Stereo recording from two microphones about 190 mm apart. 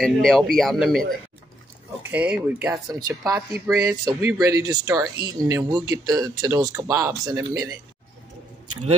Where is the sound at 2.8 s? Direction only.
20° right (ahead or behind).